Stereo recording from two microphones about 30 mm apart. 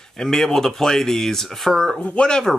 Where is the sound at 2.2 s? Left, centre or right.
Left.